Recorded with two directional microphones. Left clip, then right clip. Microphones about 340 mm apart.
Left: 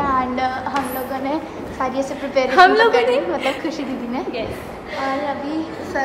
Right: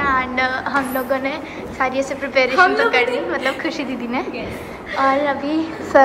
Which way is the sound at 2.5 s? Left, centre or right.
Left.